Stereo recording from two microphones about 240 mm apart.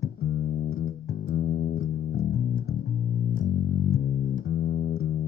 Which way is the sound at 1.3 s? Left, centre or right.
Left.